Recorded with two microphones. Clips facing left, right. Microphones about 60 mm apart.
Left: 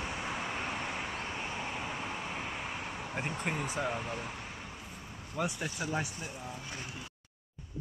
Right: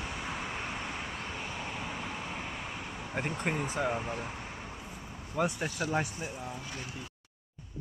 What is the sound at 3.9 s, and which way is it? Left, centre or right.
Speech, centre.